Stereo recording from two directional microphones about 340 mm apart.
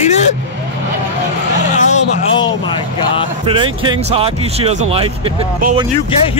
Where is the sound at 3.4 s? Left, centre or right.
Centre.